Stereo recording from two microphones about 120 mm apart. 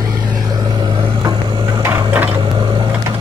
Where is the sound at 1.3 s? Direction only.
45° right (ahead or behind).